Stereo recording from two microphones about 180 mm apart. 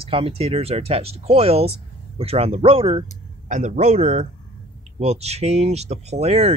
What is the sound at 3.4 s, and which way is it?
Speech, 45° right (ahead or behind).